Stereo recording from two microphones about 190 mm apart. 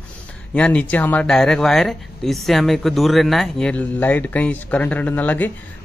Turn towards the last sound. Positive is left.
turn(degrees=10)  # may be behind; listen again after turning